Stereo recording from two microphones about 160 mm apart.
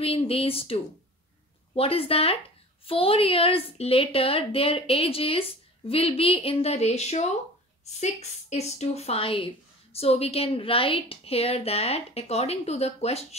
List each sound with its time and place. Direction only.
0.0 s a woman's voice: 35° left (ahead or behind)
1.8 s a woman's voice: 35° left (ahead or behind)